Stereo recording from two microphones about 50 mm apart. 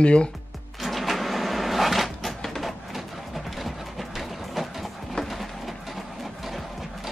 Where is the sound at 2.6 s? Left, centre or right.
Centre.